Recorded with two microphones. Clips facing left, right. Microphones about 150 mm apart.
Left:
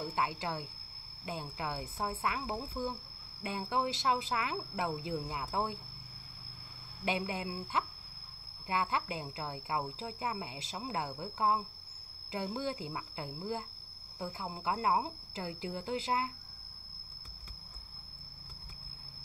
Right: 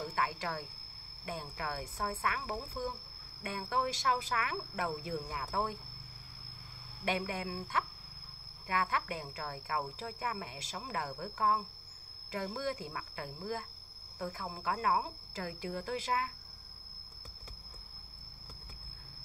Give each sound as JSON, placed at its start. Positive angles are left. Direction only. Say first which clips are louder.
{"t": 0.1, "sound": "speech", "louder": "left 1 dB", "side_deg": 20}
{"t": 7.1, "sound": "speech", "louder": "even", "side_deg": 20}